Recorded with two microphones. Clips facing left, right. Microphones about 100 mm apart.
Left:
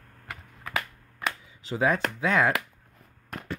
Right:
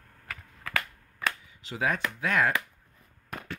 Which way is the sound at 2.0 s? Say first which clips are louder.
Left 3 dB; 90° left.